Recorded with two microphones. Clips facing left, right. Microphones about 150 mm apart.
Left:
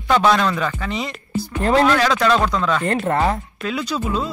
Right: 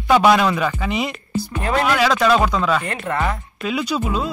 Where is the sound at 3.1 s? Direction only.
30° left (ahead or behind).